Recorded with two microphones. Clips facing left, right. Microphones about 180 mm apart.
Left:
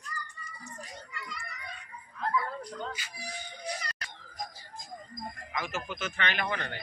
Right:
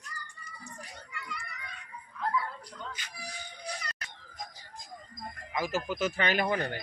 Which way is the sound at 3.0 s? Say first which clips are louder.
Left 1 dB; 10° left (ahead or behind).